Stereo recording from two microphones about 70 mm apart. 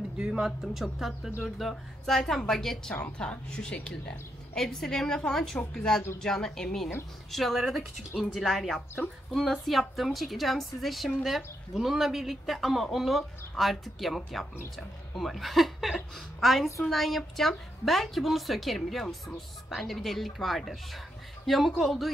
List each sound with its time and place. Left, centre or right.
0.2 s a woman's voice: centre
2.9 s a woman's voice: centre